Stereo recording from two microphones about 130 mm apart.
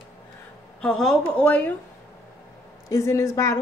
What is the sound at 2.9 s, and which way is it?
Speech, 25° left (ahead or behind).